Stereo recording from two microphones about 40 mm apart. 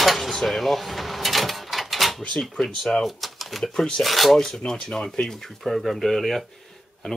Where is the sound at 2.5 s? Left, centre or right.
Centre.